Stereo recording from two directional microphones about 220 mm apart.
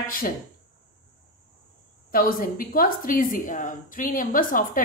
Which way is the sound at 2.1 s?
40° left (ahead or behind).